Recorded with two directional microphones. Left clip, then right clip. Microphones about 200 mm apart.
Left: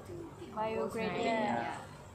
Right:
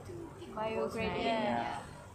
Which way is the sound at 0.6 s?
10° left (ahead or behind).